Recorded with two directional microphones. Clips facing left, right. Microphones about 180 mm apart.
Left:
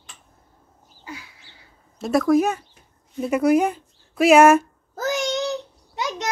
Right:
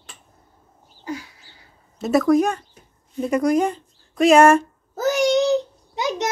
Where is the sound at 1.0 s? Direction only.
40° right (ahead or behind).